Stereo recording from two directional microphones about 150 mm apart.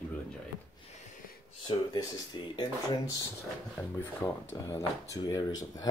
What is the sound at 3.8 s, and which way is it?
Speech, 10° left (ahead or behind).